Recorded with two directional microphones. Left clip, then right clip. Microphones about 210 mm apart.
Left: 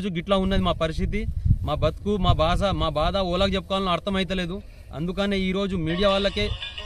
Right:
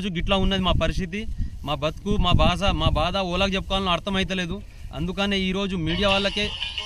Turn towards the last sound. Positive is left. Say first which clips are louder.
# right 4 dB
turn(degrees=-15)  # may be behind; listen again after turning